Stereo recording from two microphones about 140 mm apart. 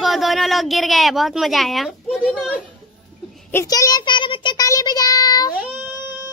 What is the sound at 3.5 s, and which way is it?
A child's voice, 20° left (ahead or behind).